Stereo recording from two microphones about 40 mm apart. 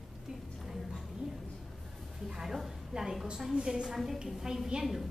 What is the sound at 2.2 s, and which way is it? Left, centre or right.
A woman's voice, centre.